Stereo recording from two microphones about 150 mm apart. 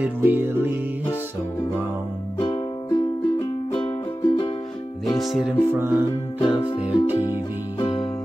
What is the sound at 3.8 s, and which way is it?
Music, 35° left (ahead or behind).